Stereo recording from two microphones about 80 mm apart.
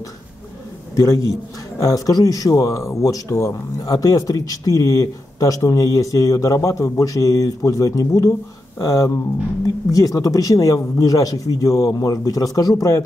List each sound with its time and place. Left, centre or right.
0.9 s speech: left